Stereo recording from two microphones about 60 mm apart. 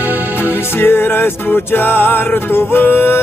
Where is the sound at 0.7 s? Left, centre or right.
Left.